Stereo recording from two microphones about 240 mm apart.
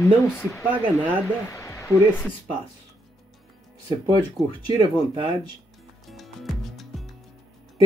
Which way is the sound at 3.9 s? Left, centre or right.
Centre.